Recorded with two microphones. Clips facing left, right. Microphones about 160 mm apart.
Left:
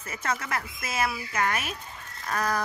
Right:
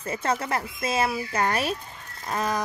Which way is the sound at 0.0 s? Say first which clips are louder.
Right 5 dB; 30° right (ahead or behind).